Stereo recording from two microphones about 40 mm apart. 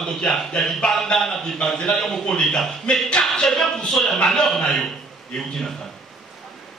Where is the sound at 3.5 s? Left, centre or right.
Centre.